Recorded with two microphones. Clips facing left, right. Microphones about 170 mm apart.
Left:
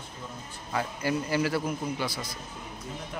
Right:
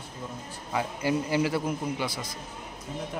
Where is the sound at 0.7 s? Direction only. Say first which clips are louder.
Right 2 dB; 20° right (ahead or behind).